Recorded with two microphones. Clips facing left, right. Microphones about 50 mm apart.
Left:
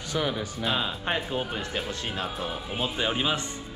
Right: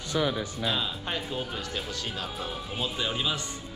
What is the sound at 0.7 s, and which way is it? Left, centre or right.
Speech, left.